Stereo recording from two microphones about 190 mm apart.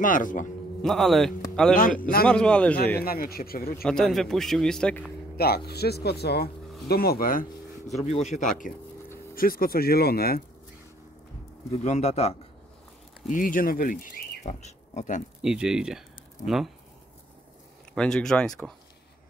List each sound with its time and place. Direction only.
0.0 s speech: 45° left (ahead or behind)
0.8 s a man's voice: centre (ahead or behind)
3.0 s speech: 50° left (ahead or behind)
3.8 s a man's voice: centre (ahead or behind)
5.7 s speech: 55° left (ahead or behind)
8.0 s speech: 35° left (ahead or behind); by 10.4 s 55° left (ahead or behind)
11.8 s speech: 35° left (ahead or behind)
13.3 s speech: 45° left (ahead or behind)
15.4 s a man's voice: 5° right (ahead or behind)
17.9 s a man's voice: 5° left (ahead or behind)